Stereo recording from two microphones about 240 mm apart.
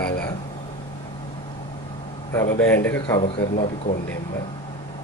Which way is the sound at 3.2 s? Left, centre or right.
Left.